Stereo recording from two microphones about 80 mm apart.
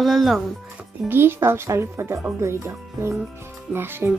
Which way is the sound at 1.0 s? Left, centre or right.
Right.